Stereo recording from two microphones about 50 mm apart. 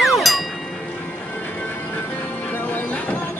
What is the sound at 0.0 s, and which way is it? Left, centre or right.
Music, centre.